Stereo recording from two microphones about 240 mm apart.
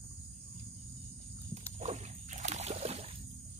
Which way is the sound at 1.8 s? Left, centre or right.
Right.